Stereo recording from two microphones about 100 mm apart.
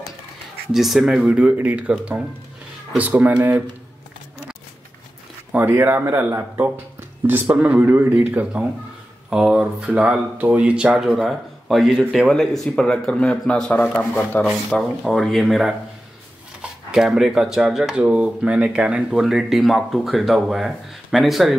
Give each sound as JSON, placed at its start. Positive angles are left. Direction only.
{"t": 0.7, "sound": "speech", "side_deg": 0}
{"t": 5.5, "sound": "speech", "side_deg": -15}
{"t": 13.9, "sound": "a man's voice", "side_deg": 20}
{"t": 14.7, "sound": "speech", "side_deg": 5}
{"t": 16.9, "sound": "speech", "side_deg": -5}